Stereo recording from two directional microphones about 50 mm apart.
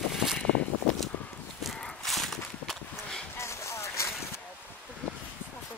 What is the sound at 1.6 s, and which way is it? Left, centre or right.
Horse, centre.